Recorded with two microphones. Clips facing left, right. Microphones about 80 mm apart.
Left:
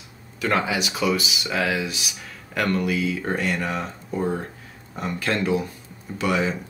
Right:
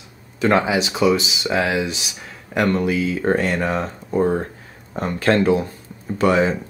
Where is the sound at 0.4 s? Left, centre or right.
Right.